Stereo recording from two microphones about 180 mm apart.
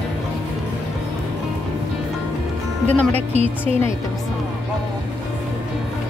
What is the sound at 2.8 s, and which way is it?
Music, 10° left (ahead or behind).